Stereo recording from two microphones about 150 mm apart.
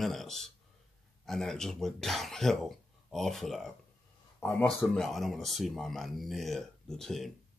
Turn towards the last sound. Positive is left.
turn(degrees=0)  # may be behind; listen again after turning